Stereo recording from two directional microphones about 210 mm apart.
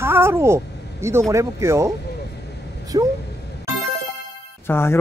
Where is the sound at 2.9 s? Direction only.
20° right (ahead or behind).